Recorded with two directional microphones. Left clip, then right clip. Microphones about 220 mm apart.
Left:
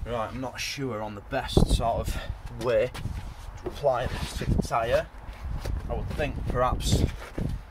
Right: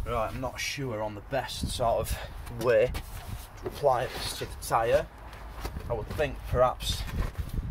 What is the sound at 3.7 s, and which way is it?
Speech, 30° right (ahead or behind).